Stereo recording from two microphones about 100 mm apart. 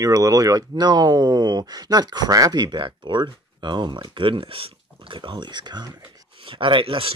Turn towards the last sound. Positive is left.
turn(degrees=-65)  # may be behind; listen again after turning